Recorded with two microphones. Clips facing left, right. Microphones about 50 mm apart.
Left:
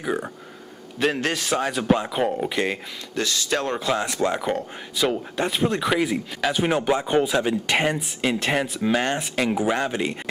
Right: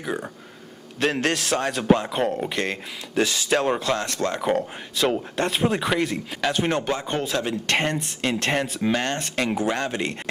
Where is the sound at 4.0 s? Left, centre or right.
Centre.